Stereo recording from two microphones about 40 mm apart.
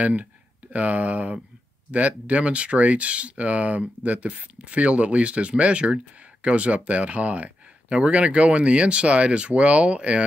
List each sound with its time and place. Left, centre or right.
0.0 s speech: right